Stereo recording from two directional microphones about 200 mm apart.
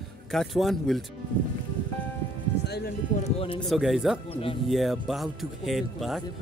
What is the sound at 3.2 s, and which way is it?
Speech, 25° left (ahead or behind).